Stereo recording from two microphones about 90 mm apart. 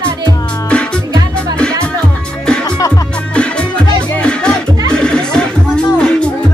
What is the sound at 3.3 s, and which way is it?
Music, 10° left (ahead or behind).